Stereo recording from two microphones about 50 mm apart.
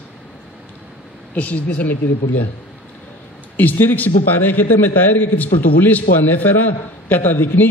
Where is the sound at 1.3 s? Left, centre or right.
Left.